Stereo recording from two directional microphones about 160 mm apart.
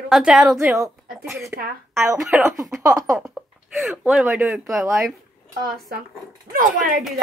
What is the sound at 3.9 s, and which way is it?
Speech, 5° right (ahead or behind).